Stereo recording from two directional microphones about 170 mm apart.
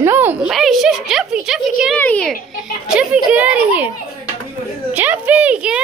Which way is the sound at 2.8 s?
5° right (ahead or behind).